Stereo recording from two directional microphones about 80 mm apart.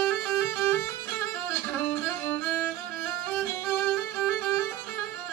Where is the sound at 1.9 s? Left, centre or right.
Left.